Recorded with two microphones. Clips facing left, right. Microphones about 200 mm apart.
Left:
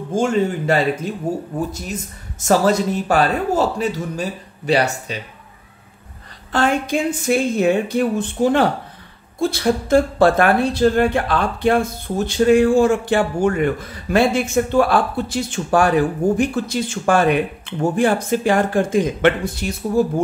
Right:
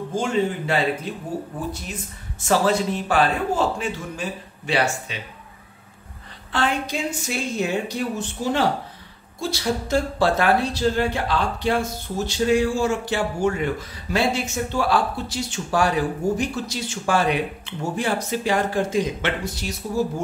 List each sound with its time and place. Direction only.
0.1 s speech: 45° left (ahead or behind)
2.4 s a man's voice: 40° left (ahead or behind)
6.5 s speech: 45° left (ahead or behind)